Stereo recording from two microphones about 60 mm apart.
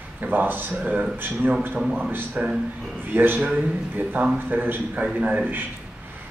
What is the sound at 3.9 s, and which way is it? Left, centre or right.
Speech, right.